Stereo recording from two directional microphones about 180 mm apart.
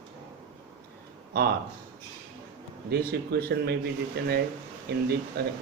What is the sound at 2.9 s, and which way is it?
Speech, 60° right (ahead or behind).